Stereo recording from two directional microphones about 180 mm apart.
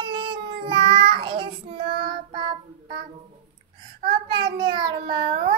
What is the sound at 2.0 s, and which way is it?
Child singing, 25° right (ahead or behind).